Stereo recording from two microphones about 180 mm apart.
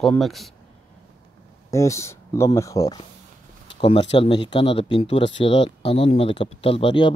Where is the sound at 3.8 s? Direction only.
30° left (ahead or behind).